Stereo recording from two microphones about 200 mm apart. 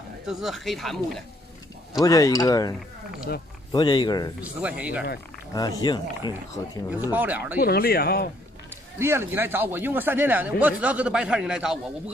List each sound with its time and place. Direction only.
0.3 s a man's voice: centre (ahead or behind)
2.0 s speech: 15° left (ahead or behind)
3.7 s speech: 20° left (ahead or behind)
4.4 s speech: 5° right (ahead or behind)
5.5 s speech: 20° left (ahead or behind)
6.9 s speech: 10° right (ahead or behind)
7.6 s speech: 50° left (ahead or behind)
8.9 s a man's voice: 10° right (ahead or behind)